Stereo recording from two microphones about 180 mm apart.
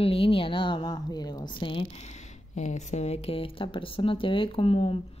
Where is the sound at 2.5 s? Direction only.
40° left (ahead or behind).